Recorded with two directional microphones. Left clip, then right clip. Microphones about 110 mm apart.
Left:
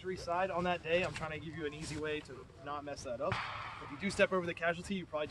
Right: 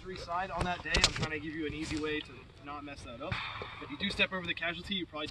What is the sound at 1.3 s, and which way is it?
Speech, 30° left (ahead or behind).